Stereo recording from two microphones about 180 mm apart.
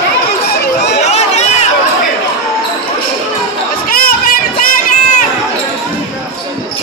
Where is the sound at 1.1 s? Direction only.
35° left (ahead or behind).